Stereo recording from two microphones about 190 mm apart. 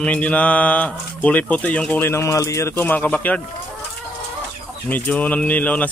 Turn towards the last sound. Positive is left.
turn(degrees=5)  # may be behind; listen again after turning